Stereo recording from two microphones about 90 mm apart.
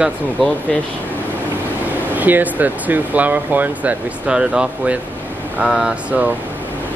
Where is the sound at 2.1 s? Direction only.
20° right (ahead or behind).